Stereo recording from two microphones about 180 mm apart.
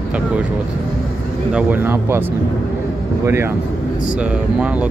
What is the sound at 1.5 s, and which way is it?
Speech, 10° right (ahead or behind).